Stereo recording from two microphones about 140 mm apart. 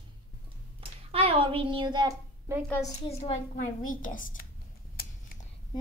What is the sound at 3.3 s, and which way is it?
Speech, 70° left (ahead or behind).